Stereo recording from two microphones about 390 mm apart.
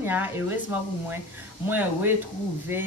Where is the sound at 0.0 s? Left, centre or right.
Centre.